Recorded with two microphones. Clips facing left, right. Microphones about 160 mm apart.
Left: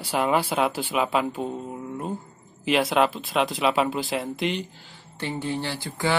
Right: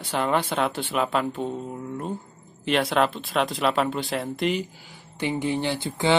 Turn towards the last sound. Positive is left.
turn(degrees=-20)  # may be behind; listen again after turning